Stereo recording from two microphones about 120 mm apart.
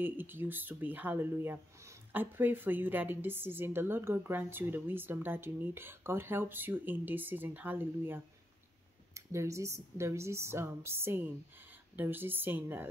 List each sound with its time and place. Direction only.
0.0 s speech: 15° right (ahead or behind)